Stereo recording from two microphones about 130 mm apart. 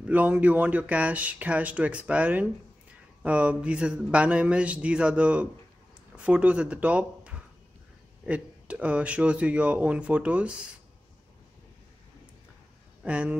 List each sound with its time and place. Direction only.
0.0 s speech: 10° right (ahead or behind)
13.0 s speech: 10° right (ahead or behind)